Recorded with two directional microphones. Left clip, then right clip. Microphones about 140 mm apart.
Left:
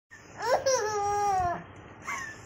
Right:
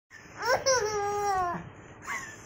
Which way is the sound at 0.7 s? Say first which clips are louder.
Left 1 dB; 20° left (ahead or behind).